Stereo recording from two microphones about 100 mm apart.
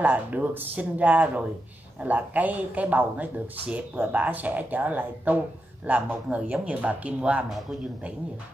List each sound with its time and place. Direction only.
0.0 s speech: 15° right (ahead or behind)